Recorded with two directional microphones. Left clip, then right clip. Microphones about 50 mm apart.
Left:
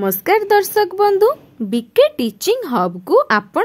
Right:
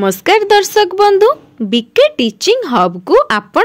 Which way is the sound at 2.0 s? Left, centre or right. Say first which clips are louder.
Right 3 dB; left.